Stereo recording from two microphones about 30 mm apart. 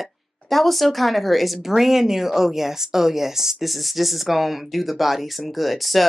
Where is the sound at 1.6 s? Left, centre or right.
Centre.